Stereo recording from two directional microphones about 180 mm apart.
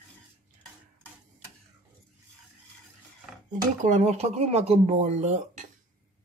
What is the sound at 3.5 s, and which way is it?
Speech, 40° right (ahead or behind).